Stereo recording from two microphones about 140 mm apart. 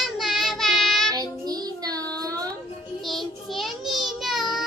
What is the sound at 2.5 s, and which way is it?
Child singing, centre (ahead or behind).